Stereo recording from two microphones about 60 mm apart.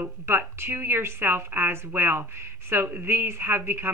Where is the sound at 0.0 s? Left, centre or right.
Right.